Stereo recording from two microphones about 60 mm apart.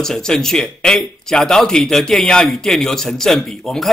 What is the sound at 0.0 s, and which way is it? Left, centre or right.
A man's voice, centre.